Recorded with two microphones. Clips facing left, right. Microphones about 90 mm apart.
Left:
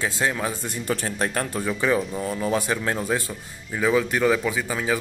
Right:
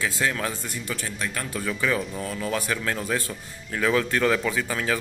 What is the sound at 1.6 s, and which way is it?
Speech, 20° left (ahead or behind).